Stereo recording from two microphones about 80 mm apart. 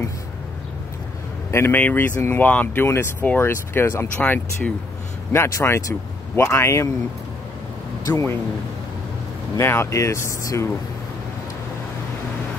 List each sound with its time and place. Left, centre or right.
1.5 s speech: left
5.3 s speech: left
8.1 s speech: left
9.6 s speech: left